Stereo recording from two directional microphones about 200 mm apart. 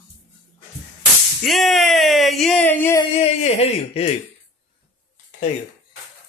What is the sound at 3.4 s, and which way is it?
Speech, 35° left (ahead or behind).